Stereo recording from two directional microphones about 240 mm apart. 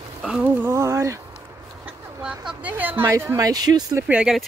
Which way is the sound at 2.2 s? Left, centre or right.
Centre.